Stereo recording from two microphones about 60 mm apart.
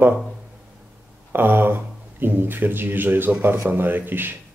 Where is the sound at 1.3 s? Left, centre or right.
Right.